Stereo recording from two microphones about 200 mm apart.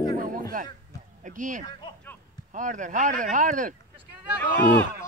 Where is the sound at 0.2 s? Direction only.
45° right (ahead or behind).